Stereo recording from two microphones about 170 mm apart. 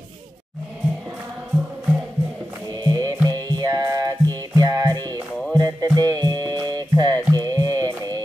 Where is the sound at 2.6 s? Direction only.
25° right (ahead or behind).